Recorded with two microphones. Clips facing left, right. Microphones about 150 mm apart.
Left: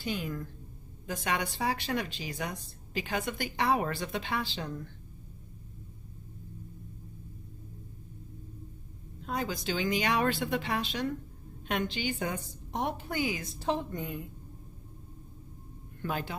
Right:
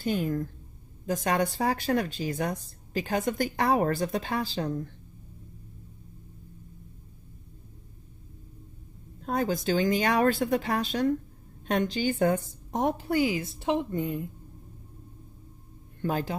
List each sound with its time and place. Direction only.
0.0 s speech: 45° right (ahead or behind)
9.2 s speech: 50° right (ahead or behind)
13.1 s a woman's voice: 30° right (ahead or behind)
16.0 s speech: 35° right (ahead or behind)